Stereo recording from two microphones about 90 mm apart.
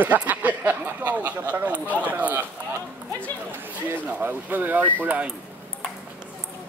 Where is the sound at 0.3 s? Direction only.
20° right (ahead or behind).